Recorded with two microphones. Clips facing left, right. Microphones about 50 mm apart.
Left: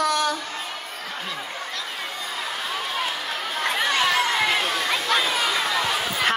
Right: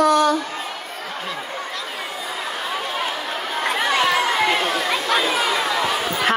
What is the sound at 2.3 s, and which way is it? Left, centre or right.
Chatter, centre.